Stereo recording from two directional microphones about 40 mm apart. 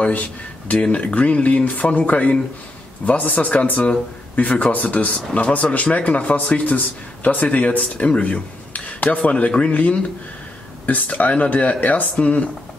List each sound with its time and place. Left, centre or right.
0.1 s speech: left
7.3 s speech: left